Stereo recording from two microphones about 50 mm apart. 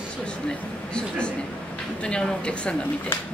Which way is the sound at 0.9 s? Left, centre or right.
Centre.